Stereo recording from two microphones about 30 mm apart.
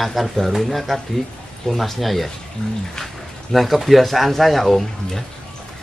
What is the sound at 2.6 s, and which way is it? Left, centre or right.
Speech, left.